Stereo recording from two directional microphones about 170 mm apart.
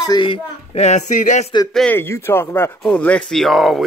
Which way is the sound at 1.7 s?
10° left (ahead or behind).